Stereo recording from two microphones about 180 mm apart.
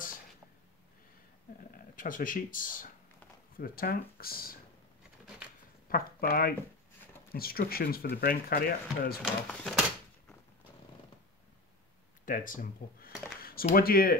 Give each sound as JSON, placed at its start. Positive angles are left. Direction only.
{"t": 2.0, "sound": "speech", "side_deg": 50}
{"t": 5.9, "sound": "speech", "side_deg": 55}
{"t": 9.2, "sound": "speech", "side_deg": 5}
{"t": 12.3, "sound": "speech", "side_deg": 50}
{"t": 13.4, "sound": "a sound", "side_deg": 55}
{"t": 13.7, "sound": "speech", "side_deg": 55}